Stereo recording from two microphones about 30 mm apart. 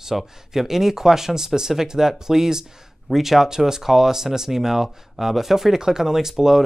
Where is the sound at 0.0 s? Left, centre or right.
Centre.